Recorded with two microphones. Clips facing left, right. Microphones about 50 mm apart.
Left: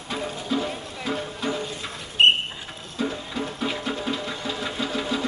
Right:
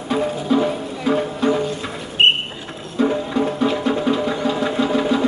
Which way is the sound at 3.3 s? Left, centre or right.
Centre.